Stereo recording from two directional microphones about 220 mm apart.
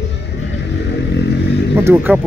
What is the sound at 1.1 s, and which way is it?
Vehicle, 50° left (ahead or behind).